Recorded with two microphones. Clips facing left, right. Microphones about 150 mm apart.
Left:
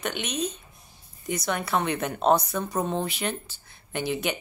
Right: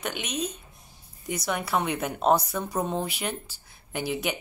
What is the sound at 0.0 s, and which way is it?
A woman's voice, 5° right (ahead or behind).